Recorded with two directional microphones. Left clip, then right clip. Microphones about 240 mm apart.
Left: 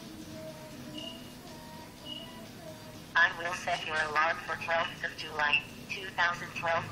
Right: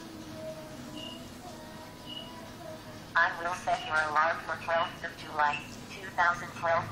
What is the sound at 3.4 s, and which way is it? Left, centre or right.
Speech, left.